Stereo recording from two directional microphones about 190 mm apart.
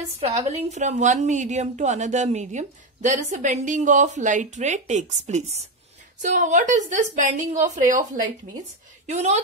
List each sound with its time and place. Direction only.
0.3 s a woman's voice: 35° right (ahead or behind)
9.0 s a woman's voice: 35° right (ahead or behind)